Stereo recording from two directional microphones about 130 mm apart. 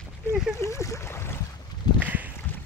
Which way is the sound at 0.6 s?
20° left (ahead or behind).